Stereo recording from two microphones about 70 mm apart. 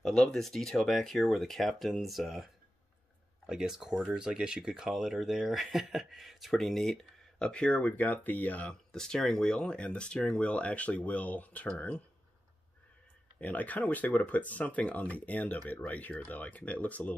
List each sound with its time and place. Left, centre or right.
0.0 s speech: centre
13.4 s speech: left